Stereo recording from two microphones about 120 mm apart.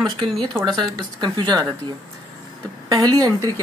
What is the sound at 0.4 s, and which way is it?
A woman's voice, 30° right (ahead or behind).